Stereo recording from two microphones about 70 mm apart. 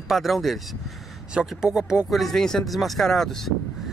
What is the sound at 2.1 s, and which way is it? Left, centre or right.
Speech, centre.